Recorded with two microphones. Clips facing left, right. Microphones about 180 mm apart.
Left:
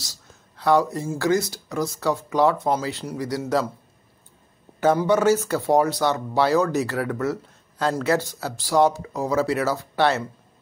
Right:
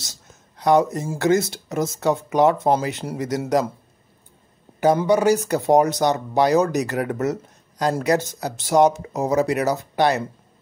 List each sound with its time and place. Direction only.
0.0 s speech: 20° right (ahead or behind)
4.7 s speech: 15° right (ahead or behind)